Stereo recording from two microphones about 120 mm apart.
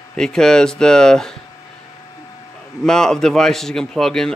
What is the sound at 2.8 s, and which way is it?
A man's voice, 5° left (ahead or behind).